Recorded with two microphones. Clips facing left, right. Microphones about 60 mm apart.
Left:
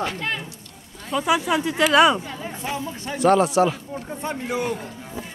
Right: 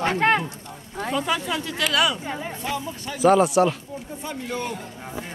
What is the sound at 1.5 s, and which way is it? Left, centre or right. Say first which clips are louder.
Speech: left 6 dB; left.